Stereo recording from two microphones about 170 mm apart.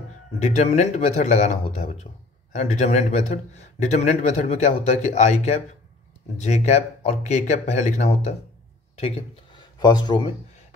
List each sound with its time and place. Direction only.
0.4 s a man's voice: 40° left (ahead or behind)